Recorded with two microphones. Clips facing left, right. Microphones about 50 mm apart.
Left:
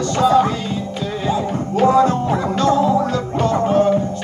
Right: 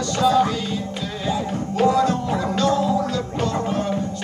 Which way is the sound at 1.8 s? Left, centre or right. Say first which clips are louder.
Left 4 dB; left.